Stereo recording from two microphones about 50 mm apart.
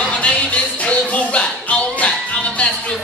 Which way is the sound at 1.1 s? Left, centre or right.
Left.